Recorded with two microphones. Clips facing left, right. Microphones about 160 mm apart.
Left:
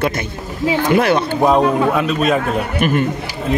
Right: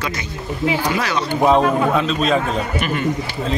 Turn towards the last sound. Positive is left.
turn(degrees=45)  # may be behind; listen again after turning